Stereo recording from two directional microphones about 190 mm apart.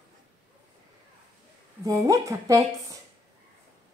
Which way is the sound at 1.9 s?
15° right (ahead or behind).